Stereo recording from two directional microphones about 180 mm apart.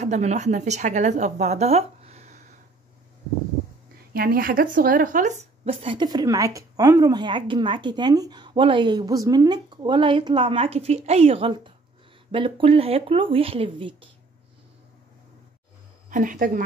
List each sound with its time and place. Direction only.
0.0 s speech: 40° right (ahead or behind)
4.1 s speech: 55° right (ahead or behind); by 13.9 s 30° right (ahead or behind)
16.1 s a woman's voice: 45° right (ahead or behind)